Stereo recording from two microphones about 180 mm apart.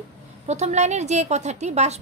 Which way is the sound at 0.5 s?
40° right (ahead or behind).